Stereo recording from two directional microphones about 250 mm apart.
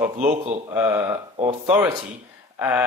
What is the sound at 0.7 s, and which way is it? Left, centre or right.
Speech, centre.